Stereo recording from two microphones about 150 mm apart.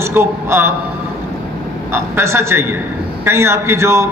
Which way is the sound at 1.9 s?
15° right (ahead or behind).